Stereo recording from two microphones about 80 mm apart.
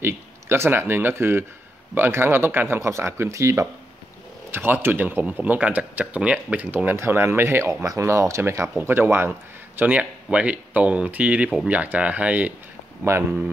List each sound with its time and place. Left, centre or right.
0.0 s speech: right
4.5 s speech: right
7.8 s speech: right; by 12.5 s centre